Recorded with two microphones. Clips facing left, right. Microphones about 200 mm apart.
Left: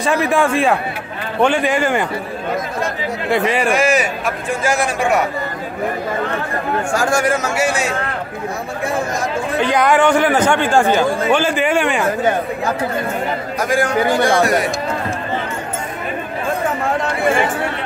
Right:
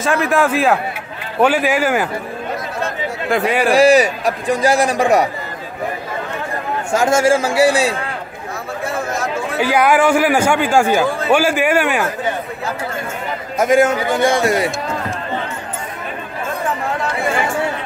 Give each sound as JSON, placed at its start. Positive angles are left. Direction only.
{"t": 0.0, "sound": "a man's voice", "side_deg": 0}
{"t": 3.3, "sound": "a man's voice", "side_deg": 0}
{"t": 3.7, "sound": "a man's voice", "side_deg": -35}
{"t": 6.9, "sound": "speech", "side_deg": -20}
{"t": 9.6, "sound": "a man's voice", "side_deg": -5}
{"t": 13.6, "sound": "speech", "side_deg": -25}